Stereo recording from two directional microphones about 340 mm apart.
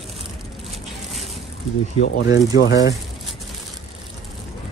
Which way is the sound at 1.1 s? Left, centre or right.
Centre.